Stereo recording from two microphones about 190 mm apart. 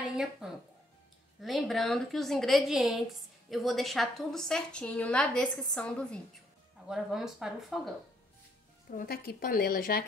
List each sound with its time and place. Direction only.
0.1 s a woman's voice: 5° right (ahead or behind)
8.9 s speech: 50° left (ahead or behind)